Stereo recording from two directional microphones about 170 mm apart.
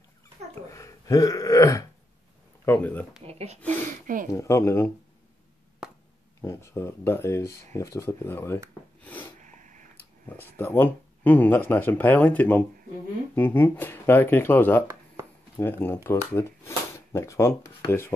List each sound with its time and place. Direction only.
0.7 s throat clearing: 20° left (ahead or behind)
2.6 s speech: 10° left (ahead or behind)
3.3 s speech: 40° right (ahead or behind)
4.3 s speech: 15° left (ahead or behind)
6.4 s speech: 15° left (ahead or behind)
9.0 s snort: 10° left (ahead or behind)
9.4 s a sound: 45° right (ahead or behind)
10.2 s speech: 10° left (ahead or behind)